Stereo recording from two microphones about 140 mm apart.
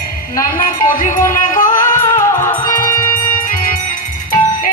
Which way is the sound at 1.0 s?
75° left (ahead or behind).